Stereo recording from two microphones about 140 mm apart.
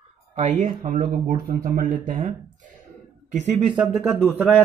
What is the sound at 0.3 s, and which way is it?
Speech, 60° right (ahead or behind).